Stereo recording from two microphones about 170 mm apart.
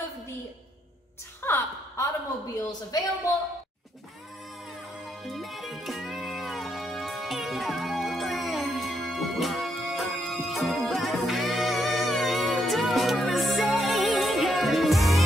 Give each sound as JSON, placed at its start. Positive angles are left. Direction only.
{"t": 1.4, "sound": "a sound", "side_deg": 15}
{"t": 2.9, "sound": "speech", "side_deg": 20}
{"t": 5.2, "sound": "music", "side_deg": 0}